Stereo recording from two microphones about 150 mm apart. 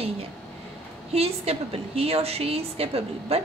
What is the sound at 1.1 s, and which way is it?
A woman's voice, 40° right (ahead or behind).